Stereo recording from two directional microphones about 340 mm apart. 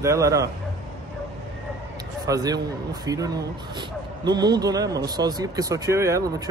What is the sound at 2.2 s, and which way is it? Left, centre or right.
A man's voice, centre.